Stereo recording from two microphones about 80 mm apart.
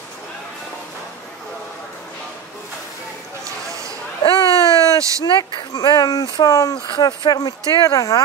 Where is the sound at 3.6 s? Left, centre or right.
Right.